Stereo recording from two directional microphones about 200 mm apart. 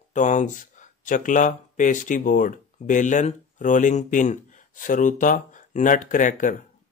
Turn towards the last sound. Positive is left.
turn(degrees=40)  # may be behind; listen again after turning